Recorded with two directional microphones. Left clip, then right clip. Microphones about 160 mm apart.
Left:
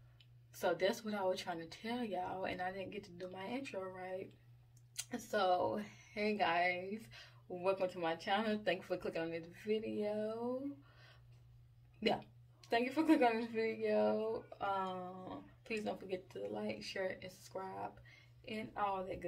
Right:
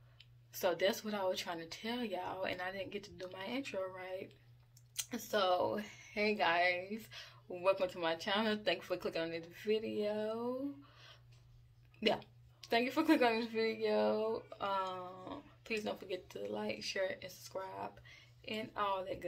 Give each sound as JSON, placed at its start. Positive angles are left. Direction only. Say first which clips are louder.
{"t": 0.2, "sound": "speech", "louder": "right 2 dB", "side_deg": 0}
{"t": 12.0, "sound": "speech", "louder": "right 2 dB", "side_deg": 0}